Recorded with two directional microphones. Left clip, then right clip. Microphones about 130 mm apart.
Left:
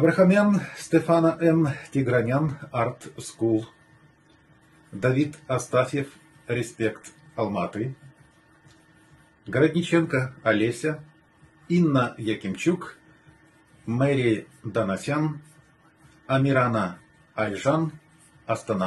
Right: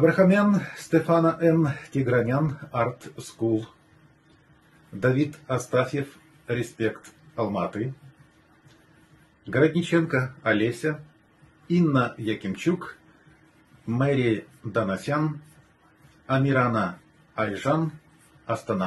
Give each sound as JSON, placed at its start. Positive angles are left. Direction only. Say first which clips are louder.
{"t": 0.0, "sound": "speech", "louder": "even", "side_deg": 10}
{"t": 5.0, "sound": "speech", "louder": "even", "side_deg": 15}
{"t": 9.8, "sound": "speech", "louder": "left 1 dB", "side_deg": 10}
{"t": 13.8, "sound": "speech", "louder": "left 1 dB", "side_deg": 10}
{"t": 16.3, "sound": "speech", "louder": "left 1 dB", "side_deg": 15}